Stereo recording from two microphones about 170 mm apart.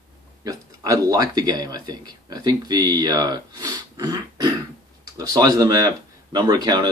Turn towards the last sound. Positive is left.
turn(degrees=-25)  # may be behind; listen again after turning